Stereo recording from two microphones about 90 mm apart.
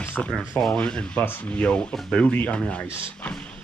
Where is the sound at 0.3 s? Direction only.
5° left (ahead or behind).